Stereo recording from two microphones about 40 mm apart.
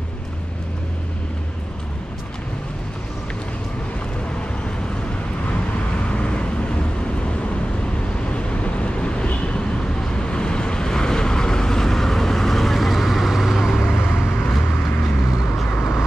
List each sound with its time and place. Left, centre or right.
6.1 s vehicle: left
8.3 s vehicle: left; by 13.8 s centre
13.8 s vehicle: left